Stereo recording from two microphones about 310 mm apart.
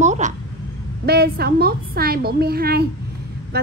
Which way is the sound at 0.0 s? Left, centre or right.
Right.